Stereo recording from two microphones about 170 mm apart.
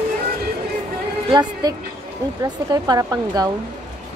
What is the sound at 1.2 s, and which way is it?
Speech, 25° right (ahead or behind).